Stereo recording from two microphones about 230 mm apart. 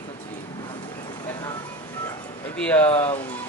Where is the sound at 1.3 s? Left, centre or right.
Centre.